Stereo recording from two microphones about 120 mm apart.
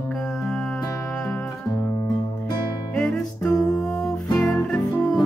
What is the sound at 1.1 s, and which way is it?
Music, 10° left (ahead or behind).